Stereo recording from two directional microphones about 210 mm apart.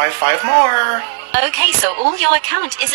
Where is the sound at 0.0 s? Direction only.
50° right (ahead or behind).